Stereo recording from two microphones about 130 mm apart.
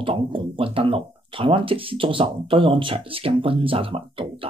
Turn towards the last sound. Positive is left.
turn(degrees=-45)  # may be behind; listen again after turning